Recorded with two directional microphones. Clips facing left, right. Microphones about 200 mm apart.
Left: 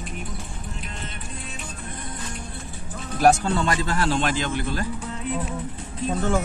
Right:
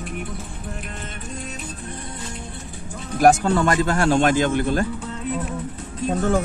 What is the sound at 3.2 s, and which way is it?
Speech, 55° right (ahead or behind).